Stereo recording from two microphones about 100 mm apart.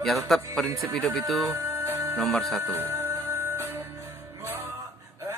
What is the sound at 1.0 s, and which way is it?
Speech, 5° left (ahead or behind).